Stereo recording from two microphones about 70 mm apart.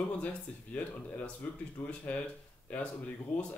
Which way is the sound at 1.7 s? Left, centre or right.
Left.